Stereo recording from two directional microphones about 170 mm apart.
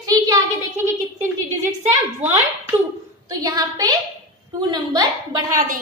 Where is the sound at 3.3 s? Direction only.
20° right (ahead or behind).